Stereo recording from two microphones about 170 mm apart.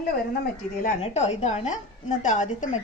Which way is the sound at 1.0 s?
40° left (ahead or behind).